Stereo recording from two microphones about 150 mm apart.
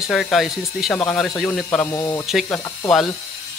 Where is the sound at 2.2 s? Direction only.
Centre (ahead or behind).